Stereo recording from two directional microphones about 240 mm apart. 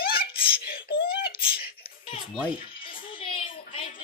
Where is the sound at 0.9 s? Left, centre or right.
Left.